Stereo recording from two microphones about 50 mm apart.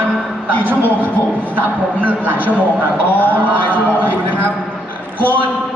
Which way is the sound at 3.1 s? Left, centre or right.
Left.